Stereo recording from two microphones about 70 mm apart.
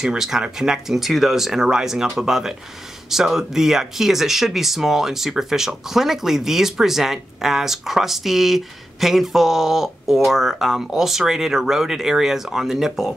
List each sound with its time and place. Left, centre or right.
0.0 s speech: centre